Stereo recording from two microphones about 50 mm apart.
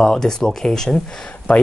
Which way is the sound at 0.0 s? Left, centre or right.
Centre.